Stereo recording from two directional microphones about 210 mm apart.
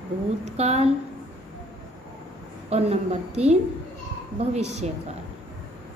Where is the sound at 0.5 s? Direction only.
30° right (ahead or behind).